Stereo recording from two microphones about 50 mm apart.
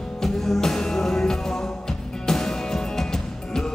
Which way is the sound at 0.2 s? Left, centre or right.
Centre.